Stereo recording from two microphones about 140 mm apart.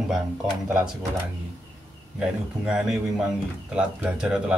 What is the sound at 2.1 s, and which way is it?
A man's voice, 5° right (ahead or behind).